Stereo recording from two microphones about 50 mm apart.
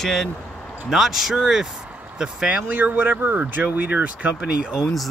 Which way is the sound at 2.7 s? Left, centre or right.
Right.